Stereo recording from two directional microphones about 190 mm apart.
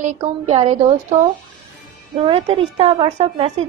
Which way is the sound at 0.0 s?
40° right (ahead or behind).